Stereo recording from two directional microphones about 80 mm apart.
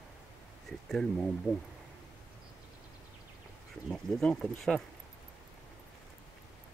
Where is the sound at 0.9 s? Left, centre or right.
Centre.